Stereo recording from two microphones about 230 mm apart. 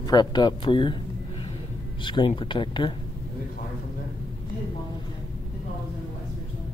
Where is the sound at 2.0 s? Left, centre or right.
Left.